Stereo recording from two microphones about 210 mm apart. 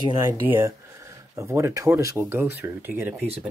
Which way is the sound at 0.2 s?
10° right (ahead or behind).